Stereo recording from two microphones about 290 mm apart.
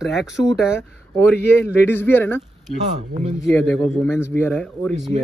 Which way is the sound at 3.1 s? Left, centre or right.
Right.